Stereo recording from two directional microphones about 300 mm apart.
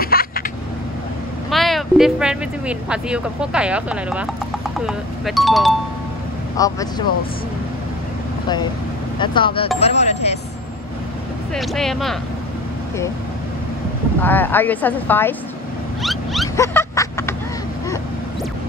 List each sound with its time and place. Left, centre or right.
0.0 s a sound: left
1.5 s speech: centre
6.5 s speech: centre
9.2 s speech: centre
11.5 s speech: centre
14.2 s speech: centre
16.0 s wild animals: centre
16.5 s vehicle: centre